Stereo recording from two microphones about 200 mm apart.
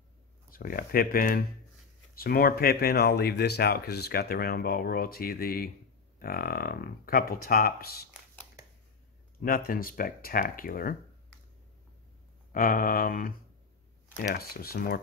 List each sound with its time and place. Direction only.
0.5 s speech: 45° left (ahead or behind)
9.4 s speech: 45° left (ahead or behind)
12.5 s speech: 45° left (ahead or behind)